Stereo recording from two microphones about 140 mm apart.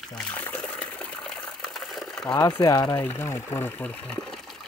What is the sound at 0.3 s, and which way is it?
Water, 10° left (ahead or behind).